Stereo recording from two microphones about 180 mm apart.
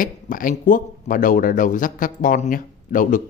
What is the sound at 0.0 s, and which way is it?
Speech, 50° left (ahead or behind).